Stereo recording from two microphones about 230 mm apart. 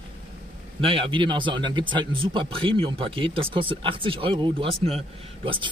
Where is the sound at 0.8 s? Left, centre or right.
Right.